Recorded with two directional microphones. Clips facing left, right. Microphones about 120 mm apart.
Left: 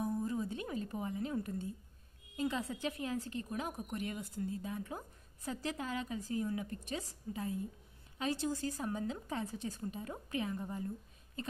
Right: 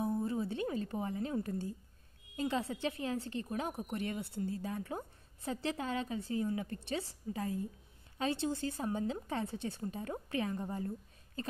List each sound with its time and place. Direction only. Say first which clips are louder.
0.0 s music: right 2 dB; 30° right (ahead or behind)
2.3 s a woman's voice: right 2 dB; 30° right (ahead or behind)